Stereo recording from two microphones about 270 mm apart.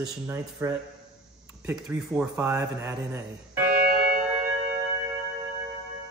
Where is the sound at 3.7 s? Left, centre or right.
Right.